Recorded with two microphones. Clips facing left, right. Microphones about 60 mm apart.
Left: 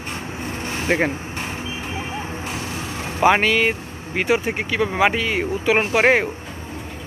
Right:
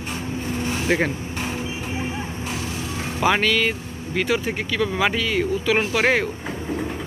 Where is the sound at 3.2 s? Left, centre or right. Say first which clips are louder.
Left 3 dB; centre.